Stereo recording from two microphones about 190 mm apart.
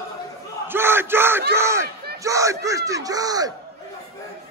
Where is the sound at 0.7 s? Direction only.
10° right (ahead or behind).